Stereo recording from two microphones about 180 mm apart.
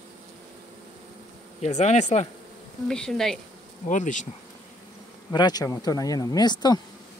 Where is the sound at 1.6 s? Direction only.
40° left (ahead or behind).